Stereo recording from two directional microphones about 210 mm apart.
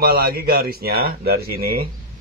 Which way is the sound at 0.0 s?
45° right (ahead or behind).